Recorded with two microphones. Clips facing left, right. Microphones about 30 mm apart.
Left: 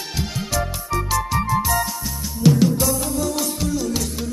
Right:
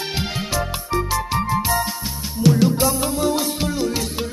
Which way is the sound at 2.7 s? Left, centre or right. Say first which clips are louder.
Right 2 dB; right.